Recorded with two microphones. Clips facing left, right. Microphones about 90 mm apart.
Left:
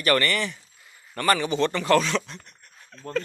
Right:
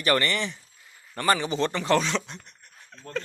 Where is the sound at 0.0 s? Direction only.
20° right (ahead or behind).